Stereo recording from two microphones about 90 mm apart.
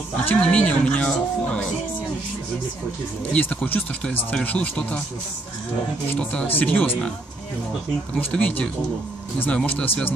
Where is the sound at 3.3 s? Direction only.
15° left (ahead or behind).